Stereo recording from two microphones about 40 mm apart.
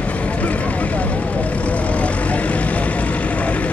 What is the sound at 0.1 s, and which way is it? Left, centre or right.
Vehicle, left.